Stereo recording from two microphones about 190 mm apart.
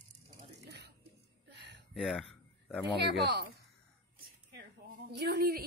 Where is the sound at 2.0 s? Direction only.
Centre (ahead or behind).